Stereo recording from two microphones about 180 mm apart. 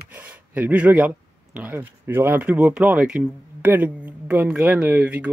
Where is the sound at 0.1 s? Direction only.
10° right (ahead or behind).